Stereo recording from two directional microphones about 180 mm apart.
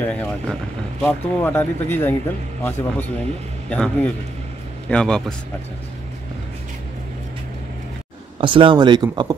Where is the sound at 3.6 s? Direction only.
5° left (ahead or behind).